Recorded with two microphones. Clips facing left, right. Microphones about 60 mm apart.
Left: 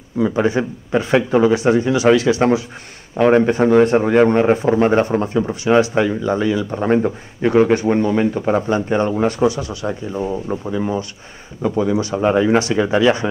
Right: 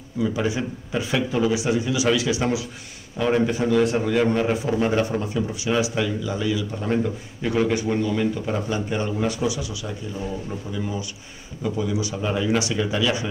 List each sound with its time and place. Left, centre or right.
0.2 s speech: left